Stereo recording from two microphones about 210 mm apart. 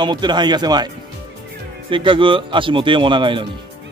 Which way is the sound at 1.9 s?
25° right (ahead or behind).